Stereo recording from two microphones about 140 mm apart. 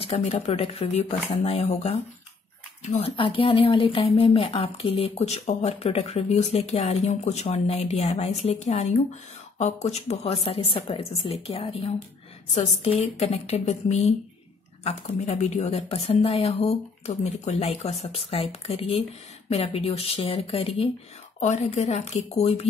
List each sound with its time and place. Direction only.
0.0 s speech: 50° left (ahead or behind)
3.2 s speech: 40° left (ahead or behind)
15.2 s speech: 50° left (ahead or behind)